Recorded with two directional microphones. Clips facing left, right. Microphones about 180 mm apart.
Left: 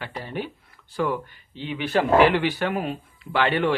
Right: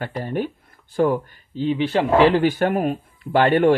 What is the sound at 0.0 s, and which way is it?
Speech, 50° right (ahead or behind).